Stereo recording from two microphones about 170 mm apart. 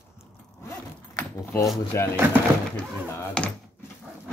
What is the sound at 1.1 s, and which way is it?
Keys jangling, 15° left (ahead or behind).